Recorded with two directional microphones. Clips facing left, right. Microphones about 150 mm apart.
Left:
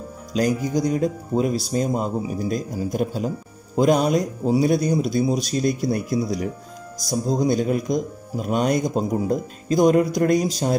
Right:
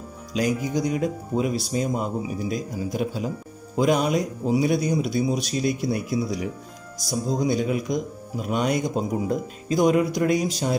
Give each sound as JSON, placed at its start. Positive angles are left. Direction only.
{"t": 0.4, "sound": "speech", "side_deg": 40}